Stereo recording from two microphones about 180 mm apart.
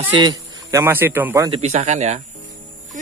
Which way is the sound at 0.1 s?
20° right (ahead or behind).